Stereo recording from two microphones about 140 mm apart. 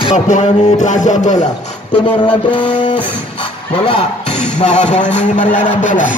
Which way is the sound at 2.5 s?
35° left (ahead or behind).